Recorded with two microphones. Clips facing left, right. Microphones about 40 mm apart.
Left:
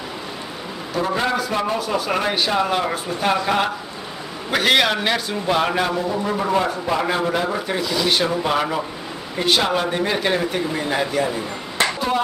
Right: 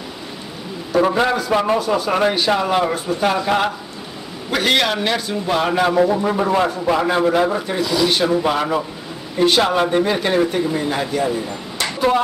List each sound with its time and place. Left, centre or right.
1.0 s a man's voice: centre
1.8 s a man's voice: centre
6.2 s a man's voice: centre
11.8 s a sound: centre